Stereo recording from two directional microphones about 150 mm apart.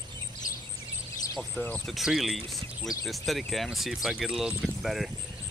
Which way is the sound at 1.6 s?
5° left (ahead or behind).